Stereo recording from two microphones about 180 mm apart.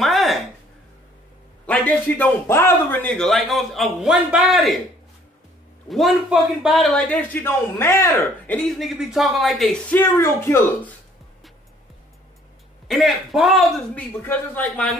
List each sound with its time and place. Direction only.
0.0 s a sound: centre (ahead or behind)
1.7 s a man's voice: 10° left (ahead or behind)
5.9 s a man's voice: centre (ahead or behind)
8.6 s a man's voice: centre (ahead or behind)
12.8 s a man's voice: centre (ahead or behind)
14.2 s speech: 10° left (ahead or behind)